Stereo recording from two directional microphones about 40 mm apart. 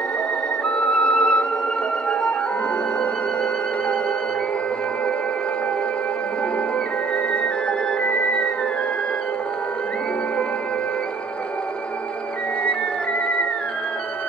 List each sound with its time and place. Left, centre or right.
0.7 s music: left
8.0 s music: left